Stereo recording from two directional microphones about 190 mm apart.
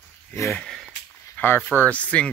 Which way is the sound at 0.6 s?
Centre (ahead or behind).